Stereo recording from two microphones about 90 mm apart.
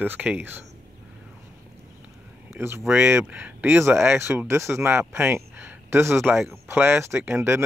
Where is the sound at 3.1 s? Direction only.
20° right (ahead or behind).